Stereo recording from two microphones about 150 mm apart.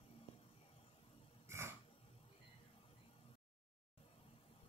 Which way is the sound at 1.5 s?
15° right (ahead or behind).